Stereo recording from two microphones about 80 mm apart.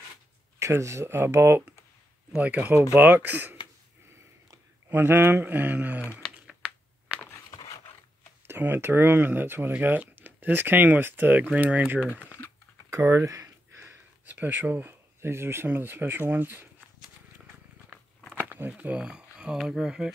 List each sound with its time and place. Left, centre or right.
0.6 s speech: right
2.3 s speech: centre
4.8 s speech: right
6.6 s a sound: centre
8.5 s speech: right
12.1 s speech: left
12.9 s a sound: right
14.2 s speech: right
18.3 s a sound: right
18.8 s speech: centre